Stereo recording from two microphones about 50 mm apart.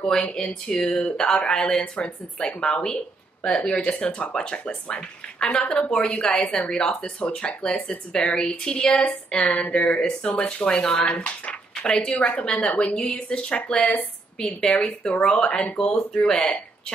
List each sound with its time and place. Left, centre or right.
0.4 s speech: centre
16.1 s speech: centre